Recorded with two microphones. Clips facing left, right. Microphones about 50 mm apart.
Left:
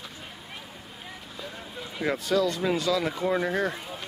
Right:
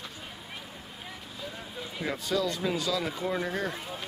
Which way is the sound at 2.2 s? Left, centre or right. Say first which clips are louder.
Left 4 dB; centre.